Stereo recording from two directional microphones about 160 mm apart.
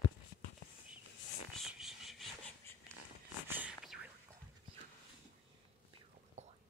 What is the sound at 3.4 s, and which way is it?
Whispering, 10° right (ahead or behind).